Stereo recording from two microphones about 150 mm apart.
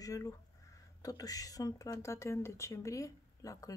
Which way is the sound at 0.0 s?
20° left (ahead or behind).